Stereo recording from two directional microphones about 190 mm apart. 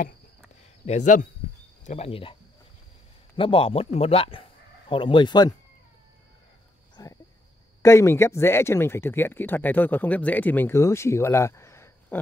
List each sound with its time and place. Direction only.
0.8 s speech: 40° left (ahead or behind)
3.3 s speech: 30° left (ahead or behind)
7.0 s a sound: 20° left (ahead or behind)
7.8 s speech: 15° left (ahead or behind)